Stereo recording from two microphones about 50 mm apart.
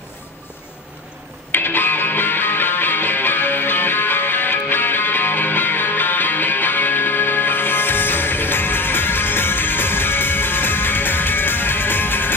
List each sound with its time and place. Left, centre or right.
1.5 s music: left